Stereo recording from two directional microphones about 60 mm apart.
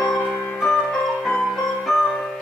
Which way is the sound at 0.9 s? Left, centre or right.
Centre.